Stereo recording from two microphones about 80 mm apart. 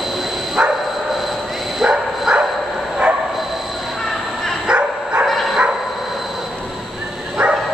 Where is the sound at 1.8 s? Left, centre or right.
Centre.